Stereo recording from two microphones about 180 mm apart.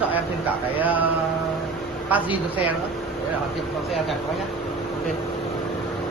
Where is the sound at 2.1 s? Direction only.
10° right (ahead or behind).